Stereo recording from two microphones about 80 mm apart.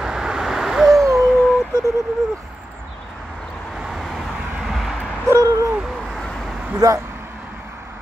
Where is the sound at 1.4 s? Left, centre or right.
Centre.